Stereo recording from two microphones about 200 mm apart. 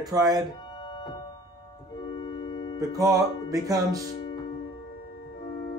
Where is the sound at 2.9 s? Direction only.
15° right (ahead or behind).